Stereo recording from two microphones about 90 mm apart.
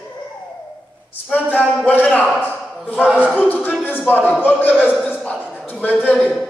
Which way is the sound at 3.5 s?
20° left (ahead or behind).